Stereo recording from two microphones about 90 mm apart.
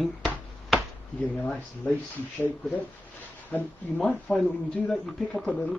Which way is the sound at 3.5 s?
20° left (ahead or behind).